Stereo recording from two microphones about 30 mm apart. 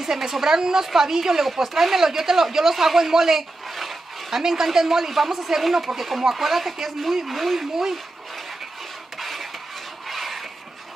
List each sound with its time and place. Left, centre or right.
0.0 s speech: centre
1.4 s speech: centre
9.2 s a sound: centre